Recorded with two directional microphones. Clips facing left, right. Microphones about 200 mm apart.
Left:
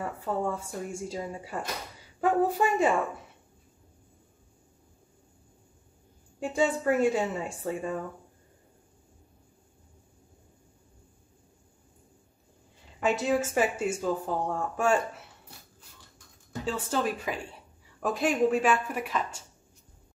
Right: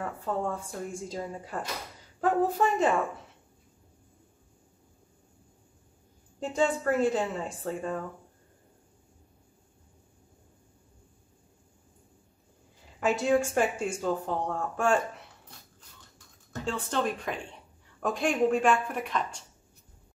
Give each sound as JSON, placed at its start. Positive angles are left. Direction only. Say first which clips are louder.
{"t": 0.0, "sound": "a woman's voice", "louder": "left 1 dB", "side_deg": 10}
{"t": 6.4, "sound": "a woman's voice", "louder": "left 1 dB", "side_deg": 10}
{"t": 13.0, "sound": "speech", "louder": "right 1 dB", "side_deg": 0}
{"t": 16.5, "sound": "a woman's voice", "louder": "left 1 dB", "side_deg": 5}